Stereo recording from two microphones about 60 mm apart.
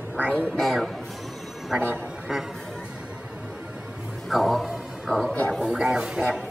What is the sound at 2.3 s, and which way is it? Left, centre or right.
Speech, centre.